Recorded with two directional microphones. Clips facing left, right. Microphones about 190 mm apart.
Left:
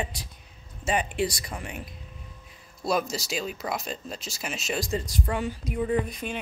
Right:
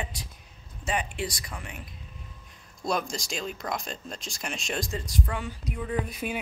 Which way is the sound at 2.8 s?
5° left (ahead or behind).